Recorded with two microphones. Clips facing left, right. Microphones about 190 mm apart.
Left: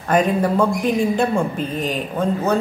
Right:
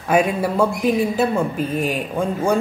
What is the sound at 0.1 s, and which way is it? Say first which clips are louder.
A man's voice: left 1 dB; 10° right (ahead or behind).